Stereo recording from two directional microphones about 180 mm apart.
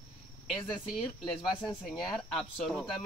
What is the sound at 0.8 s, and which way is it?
Cricket, centre (ahead or behind).